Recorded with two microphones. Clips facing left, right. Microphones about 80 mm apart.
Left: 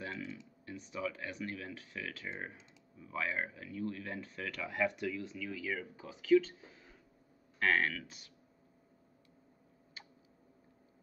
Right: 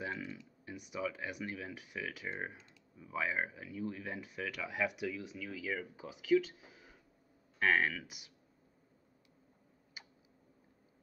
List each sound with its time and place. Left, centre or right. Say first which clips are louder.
0.0 s a sound: right 1 dB; centre
0.7 s speech: even; centre
10.0 s tick: even; centre